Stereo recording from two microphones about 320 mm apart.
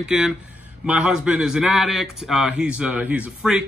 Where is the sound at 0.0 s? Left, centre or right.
Centre.